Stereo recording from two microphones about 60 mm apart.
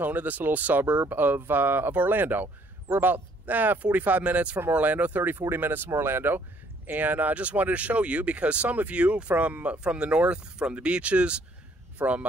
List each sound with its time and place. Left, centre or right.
0.0 s speech: right